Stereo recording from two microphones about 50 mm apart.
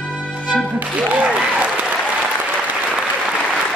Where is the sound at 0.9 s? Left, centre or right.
Right.